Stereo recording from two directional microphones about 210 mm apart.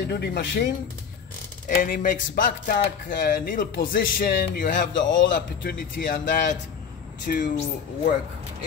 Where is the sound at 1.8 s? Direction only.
40° left (ahead or behind).